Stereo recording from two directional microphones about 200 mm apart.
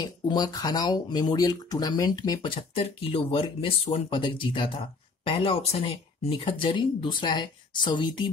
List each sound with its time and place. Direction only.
0.3 s speech: 20° left (ahead or behind)